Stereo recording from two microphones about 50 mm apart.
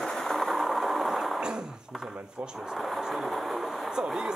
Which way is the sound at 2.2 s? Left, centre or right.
Centre.